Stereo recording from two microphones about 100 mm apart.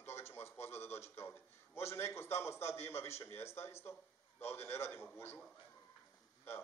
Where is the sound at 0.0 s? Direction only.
25° left (ahead or behind).